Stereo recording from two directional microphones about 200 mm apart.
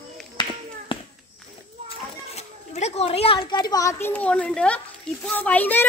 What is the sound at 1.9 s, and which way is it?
A child's voice, 30° left (ahead or behind).